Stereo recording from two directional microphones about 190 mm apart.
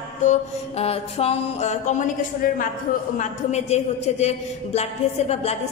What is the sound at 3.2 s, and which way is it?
A woman's voice, 35° left (ahead or behind).